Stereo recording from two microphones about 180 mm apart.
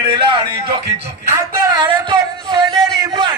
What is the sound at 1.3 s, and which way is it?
Speech, 25° right (ahead or behind).